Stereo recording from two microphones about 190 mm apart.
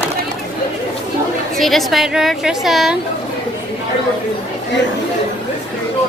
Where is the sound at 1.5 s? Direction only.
Centre (ahead or behind).